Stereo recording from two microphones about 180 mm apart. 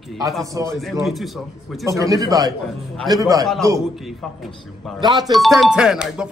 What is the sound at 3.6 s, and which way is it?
Speech, 15° right (ahead or behind).